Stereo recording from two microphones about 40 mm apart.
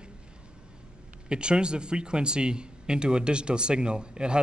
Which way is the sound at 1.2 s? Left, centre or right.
Right.